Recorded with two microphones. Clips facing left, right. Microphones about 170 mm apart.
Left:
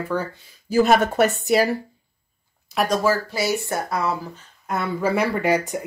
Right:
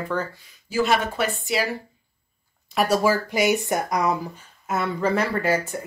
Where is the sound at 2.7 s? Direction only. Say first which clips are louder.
Right 1 dB; centre (ahead or behind).